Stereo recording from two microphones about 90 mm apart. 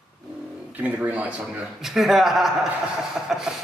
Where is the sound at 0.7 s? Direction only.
20° right (ahead or behind).